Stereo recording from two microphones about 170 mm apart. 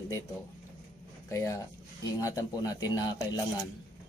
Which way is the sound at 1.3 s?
20° left (ahead or behind).